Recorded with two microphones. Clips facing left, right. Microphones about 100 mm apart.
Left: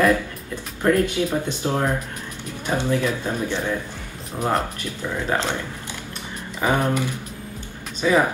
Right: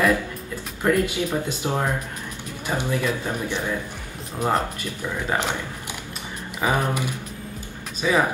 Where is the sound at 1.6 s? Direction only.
15° right (ahead or behind).